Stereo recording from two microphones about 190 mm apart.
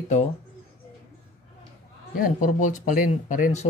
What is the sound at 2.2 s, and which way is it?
Speech, 40° left (ahead or behind).